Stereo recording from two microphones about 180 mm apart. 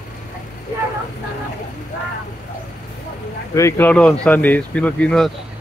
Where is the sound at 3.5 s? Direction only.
15° left (ahead or behind).